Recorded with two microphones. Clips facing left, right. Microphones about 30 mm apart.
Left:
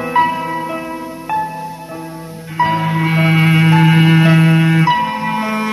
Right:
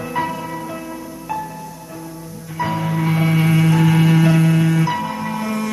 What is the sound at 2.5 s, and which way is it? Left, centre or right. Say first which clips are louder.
Music: left 6 dB; left.